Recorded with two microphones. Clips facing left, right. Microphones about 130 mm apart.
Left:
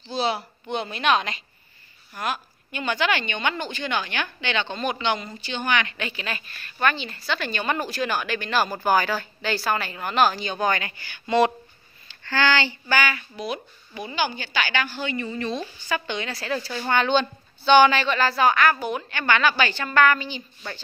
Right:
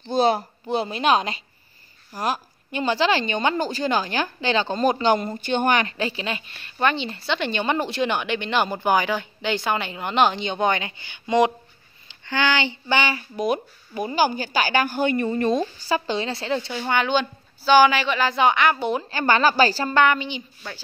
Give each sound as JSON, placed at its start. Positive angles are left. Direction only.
{"t": 0.0, "sound": "a woman's voice", "side_deg": -50}
{"t": 13.4, "sound": "a woman's voice", "side_deg": -45}
{"t": 16.7, "sound": "a woman's voice", "side_deg": -10}